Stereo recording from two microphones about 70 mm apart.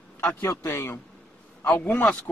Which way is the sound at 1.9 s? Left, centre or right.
Left.